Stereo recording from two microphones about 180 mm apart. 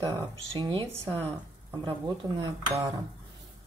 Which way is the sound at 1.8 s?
25° right (ahead or behind).